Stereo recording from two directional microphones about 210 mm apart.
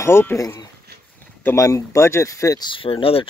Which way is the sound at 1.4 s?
15° left (ahead or behind).